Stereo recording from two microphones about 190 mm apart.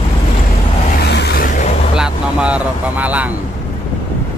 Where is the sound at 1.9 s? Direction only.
5° right (ahead or behind).